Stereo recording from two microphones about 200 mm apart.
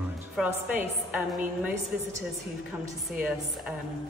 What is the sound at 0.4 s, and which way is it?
Speech, 5° right (ahead or behind).